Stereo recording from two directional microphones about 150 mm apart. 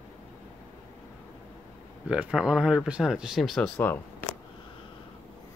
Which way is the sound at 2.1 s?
5° right (ahead or behind).